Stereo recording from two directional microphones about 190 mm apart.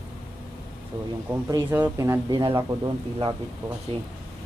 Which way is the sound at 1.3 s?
10° right (ahead or behind).